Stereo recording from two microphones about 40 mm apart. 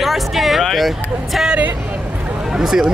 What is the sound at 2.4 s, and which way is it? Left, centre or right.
Speech, centre.